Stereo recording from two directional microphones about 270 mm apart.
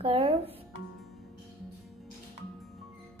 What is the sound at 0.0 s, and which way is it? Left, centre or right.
Speech, right.